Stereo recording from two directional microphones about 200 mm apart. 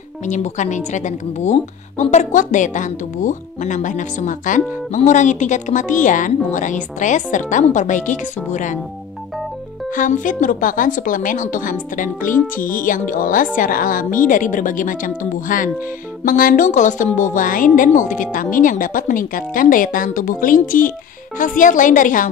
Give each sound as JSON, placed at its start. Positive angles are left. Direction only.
{"t": 0.2, "sound": "a woman's voice", "side_deg": 35}
{"t": 9.8, "sound": "a woman's voice", "side_deg": 40}